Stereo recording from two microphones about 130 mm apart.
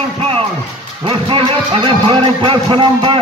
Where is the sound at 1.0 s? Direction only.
40° right (ahead or behind).